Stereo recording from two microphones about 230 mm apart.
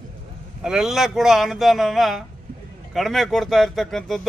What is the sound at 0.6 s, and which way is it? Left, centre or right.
Speech, centre.